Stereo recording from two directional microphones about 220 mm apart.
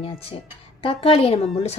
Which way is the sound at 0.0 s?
25° left (ahead or behind).